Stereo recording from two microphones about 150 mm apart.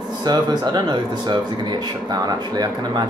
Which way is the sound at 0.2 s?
30° right (ahead or behind).